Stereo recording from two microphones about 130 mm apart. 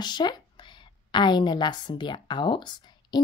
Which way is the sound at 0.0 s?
35° left (ahead or behind).